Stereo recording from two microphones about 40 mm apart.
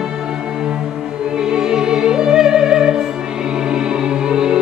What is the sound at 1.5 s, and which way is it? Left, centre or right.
Music, centre.